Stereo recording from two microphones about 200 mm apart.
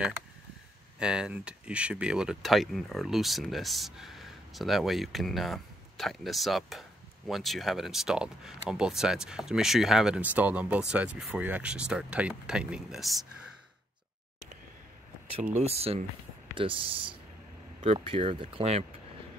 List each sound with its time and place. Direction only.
0.9 s speech: 5° right (ahead or behind)
15.6 s speech: 30° right (ahead or behind)